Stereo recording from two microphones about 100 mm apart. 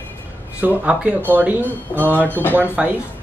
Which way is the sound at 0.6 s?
10° right (ahead or behind).